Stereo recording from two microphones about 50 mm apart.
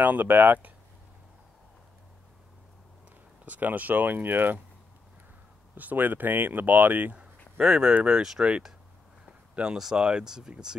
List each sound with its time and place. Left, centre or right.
0.0 s speech: right
3.4 s speech: right
5.8 s speech: right
7.6 s speech: centre
8.2 s speech: centre